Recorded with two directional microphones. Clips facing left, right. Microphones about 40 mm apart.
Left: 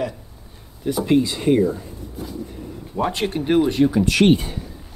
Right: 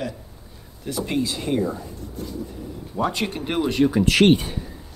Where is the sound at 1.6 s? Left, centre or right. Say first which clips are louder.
Left 5 dB; centre.